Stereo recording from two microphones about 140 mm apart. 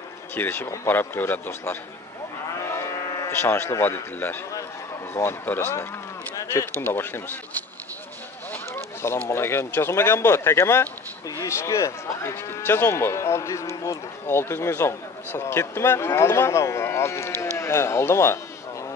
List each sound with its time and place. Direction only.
0.3 s speech: 15° left (ahead or behind)